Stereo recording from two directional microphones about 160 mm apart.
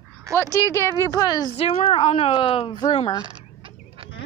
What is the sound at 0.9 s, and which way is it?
Speech, 20° left (ahead or behind).